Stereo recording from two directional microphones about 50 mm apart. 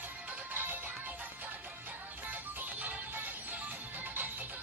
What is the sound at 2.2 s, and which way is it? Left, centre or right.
Music, right.